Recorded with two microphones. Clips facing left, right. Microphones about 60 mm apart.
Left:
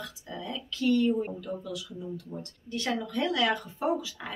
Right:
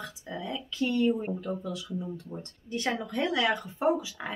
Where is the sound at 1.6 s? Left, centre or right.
Right.